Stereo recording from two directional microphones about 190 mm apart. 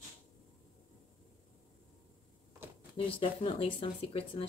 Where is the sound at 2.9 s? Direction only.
30° left (ahead or behind).